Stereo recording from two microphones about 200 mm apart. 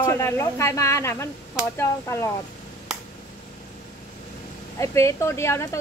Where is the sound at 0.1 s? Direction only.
15° left (ahead or behind).